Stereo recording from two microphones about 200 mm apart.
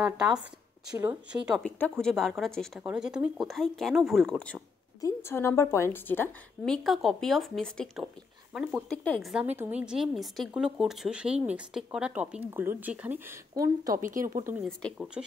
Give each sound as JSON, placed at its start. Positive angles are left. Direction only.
{"t": 0.0, "sound": "a woman's voice", "side_deg": -5}
{"t": 1.6, "sound": "a woman's voice", "side_deg": 5}